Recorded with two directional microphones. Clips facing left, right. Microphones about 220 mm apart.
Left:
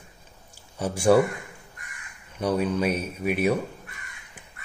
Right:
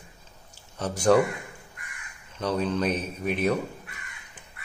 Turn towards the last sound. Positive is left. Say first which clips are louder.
# left 2 dB
turn(degrees=10)  # may be behind; listen again after turning